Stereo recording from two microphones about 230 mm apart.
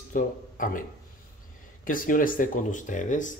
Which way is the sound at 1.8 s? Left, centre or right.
Left.